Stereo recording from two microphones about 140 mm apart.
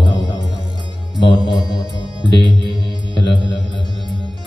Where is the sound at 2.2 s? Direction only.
35° right (ahead or behind).